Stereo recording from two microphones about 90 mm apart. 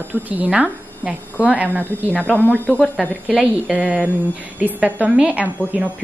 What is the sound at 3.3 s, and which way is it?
A woman's voice, 15° right (ahead or behind).